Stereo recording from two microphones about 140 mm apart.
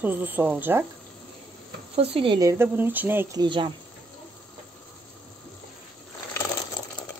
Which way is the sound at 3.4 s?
35° right (ahead or behind).